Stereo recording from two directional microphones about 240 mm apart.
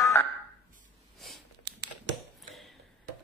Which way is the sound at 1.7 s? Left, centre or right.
Right.